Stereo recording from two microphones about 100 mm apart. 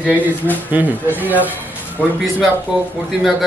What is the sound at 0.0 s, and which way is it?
Speech, 15° right (ahead or behind).